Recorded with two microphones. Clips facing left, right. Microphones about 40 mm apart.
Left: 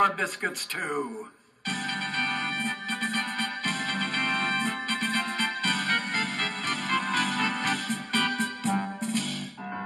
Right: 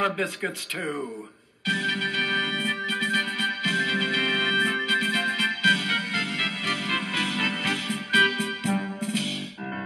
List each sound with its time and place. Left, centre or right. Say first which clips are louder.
0.4 s speech: right 1 dB; centre
2.0 s music: right 1 dB; centre
2.4 s music: right 3 dB; right
5.9 s music: right 1 dB; centre